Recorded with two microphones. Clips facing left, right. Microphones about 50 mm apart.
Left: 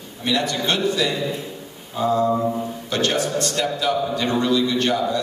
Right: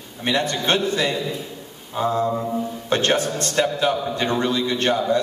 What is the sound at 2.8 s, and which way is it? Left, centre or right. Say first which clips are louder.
A man's voice: right 2 dB; right.